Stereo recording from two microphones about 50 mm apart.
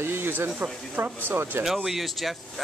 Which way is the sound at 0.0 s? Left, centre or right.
Right.